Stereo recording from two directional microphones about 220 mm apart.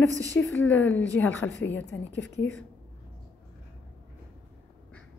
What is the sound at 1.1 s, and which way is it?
Speech, 55° left (ahead or behind).